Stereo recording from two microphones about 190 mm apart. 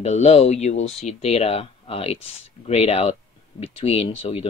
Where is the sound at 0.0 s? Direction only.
35° left (ahead or behind).